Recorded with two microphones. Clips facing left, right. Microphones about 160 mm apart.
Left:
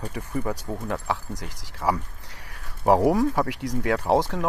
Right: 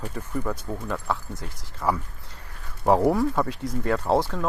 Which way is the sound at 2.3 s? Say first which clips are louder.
Even; 75° left (ahead or behind).